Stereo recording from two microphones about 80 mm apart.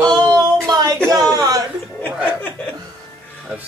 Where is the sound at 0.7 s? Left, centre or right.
Right.